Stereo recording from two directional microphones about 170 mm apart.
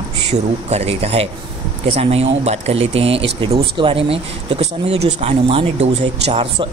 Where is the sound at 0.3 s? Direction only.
40° right (ahead or behind).